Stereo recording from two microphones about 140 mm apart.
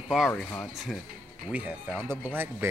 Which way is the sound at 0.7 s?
Centre (ahead or behind).